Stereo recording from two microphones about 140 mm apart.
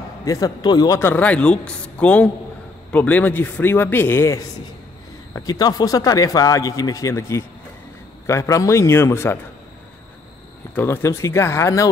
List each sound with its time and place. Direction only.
0.2 s a man's voice: 25° left (ahead or behind)
5.3 s a man's voice: 25° left (ahead or behind)
10.7 s a man's voice: 15° left (ahead or behind)